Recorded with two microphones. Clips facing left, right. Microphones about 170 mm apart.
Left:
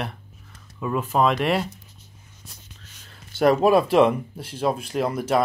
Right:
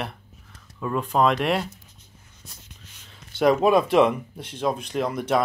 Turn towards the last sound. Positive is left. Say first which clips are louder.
# left 1 dB
turn(degrees=5)  # may be behind; listen again after turning